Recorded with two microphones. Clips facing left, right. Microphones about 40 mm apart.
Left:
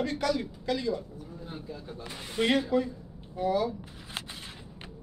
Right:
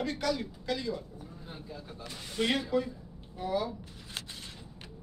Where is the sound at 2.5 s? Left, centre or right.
Centre.